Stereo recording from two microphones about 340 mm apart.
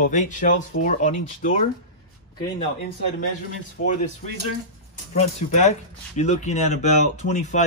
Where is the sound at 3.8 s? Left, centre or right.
Left.